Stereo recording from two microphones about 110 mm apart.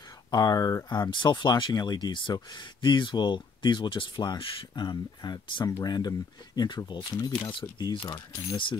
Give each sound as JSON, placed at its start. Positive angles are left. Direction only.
{"t": 0.3, "sound": "speech", "side_deg": 35}